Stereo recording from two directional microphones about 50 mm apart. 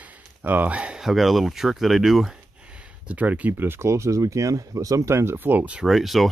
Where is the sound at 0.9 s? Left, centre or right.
Centre.